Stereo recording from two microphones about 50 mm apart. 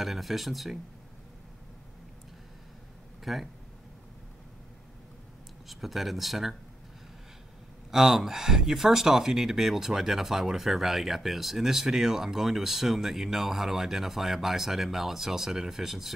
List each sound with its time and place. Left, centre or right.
0.0 s speech: centre
3.3 s speech: centre
5.7 s speech: centre
7.9 s speech: centre